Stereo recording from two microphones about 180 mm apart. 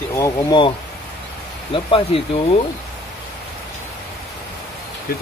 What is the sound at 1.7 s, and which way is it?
Speech, 30° left (ahead or behind).